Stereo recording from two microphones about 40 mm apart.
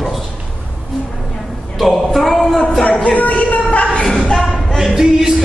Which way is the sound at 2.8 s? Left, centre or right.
Left.